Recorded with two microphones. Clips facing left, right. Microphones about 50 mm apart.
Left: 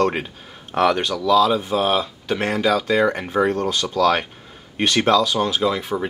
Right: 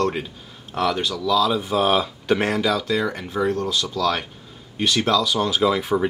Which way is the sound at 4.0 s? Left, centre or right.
Left.